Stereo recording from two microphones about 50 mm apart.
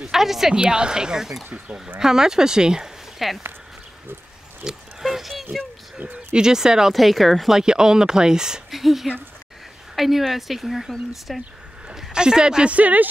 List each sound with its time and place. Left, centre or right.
0.1 s speech: centre
0.6 s speech: centre
3.2 s speech: centre
4.6 s speech: centre
5.0 s a sound: centre
6.3 s speech: centre
6.9 s speech: centre
7.5 s speech: centre
11.9 s speech: centre
12.7 s speech: right